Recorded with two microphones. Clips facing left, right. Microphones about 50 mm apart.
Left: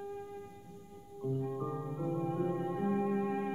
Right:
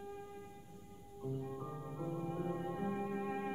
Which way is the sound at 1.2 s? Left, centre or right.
Centre.